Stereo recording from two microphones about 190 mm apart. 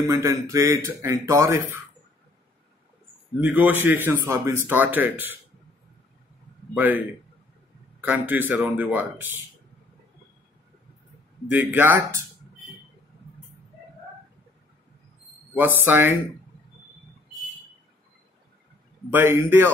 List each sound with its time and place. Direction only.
0.0 s speech: 15° right (ahead or behind)
3.3 s speech: 5° right (ahead or behind)
6.7 s speech: 10° right (ahead or behind)
11.5 s speech: 10° right (ahead or behind)
15.5 s speech: 10° right (ahead or behind)
19.1 s speech: 10° right (ahead or behind)